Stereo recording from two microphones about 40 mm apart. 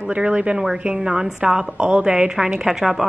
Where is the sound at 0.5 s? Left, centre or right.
Centre.